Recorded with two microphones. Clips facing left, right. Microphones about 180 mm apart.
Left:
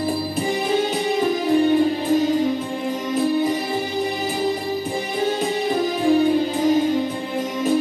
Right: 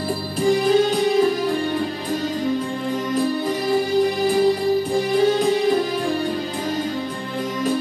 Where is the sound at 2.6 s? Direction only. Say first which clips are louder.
Right 1 dB; 5° left (ahead or behind).